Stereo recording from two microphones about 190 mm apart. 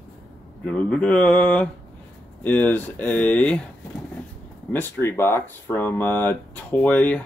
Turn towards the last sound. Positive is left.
turn(degrees=5)  # may be behind; listen again after turning